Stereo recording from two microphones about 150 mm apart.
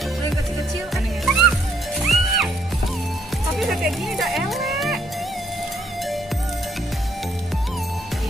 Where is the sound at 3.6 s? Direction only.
Centre (ahead or behind).